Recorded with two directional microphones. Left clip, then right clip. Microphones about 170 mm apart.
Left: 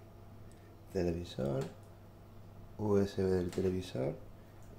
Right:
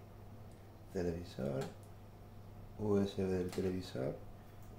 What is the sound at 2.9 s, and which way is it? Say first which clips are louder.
Speech: left 4 dB; 35° left (ahead or behind).